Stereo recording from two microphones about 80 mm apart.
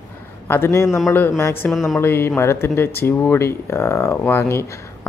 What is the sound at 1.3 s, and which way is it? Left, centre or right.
Speech, left.